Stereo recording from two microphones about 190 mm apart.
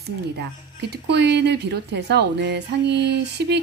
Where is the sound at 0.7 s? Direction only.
60° right (ahead or behind).